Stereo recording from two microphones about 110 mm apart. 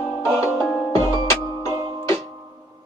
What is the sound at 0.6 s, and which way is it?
Music, 10° left (ahead or behind).